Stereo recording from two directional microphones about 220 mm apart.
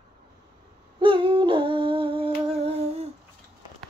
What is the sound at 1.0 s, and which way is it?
Humming, 20° right (ahead or behind).